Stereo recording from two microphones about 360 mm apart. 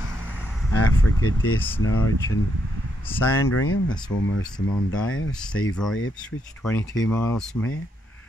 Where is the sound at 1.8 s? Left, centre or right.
Left.